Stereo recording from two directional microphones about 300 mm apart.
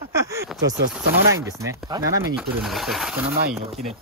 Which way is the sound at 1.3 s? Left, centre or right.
Centre.